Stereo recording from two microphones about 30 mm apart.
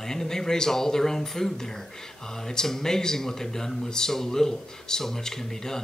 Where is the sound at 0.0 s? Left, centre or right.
Centre.